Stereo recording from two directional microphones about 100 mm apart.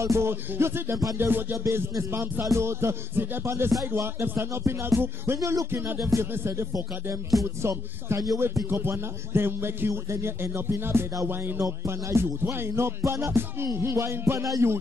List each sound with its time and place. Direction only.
0.0 s a man's voice: 25° right (ahead or behind)